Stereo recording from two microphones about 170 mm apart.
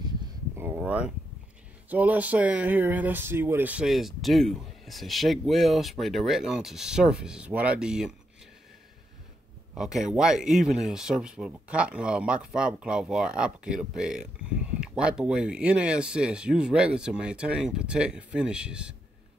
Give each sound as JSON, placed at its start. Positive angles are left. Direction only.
{"t": 0.6, "sound": "a sound", "side_deg": -10}
{"t": 1.9, "sound": "speech", "side_deg": -10}
{"t": 9.8, "sound": "speech", "side_deg": 0}